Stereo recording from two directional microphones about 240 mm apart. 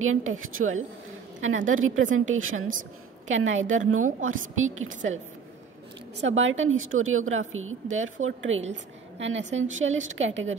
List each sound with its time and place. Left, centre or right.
0.0 s a woman's voice: right
6.2 s a woman's voice: right